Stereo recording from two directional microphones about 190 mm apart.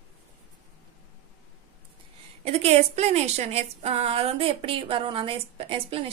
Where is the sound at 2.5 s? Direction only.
35° right (ahead or behind).